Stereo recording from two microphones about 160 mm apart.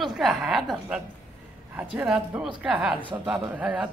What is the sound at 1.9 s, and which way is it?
A woman's voice, 5° right (ahead or behind).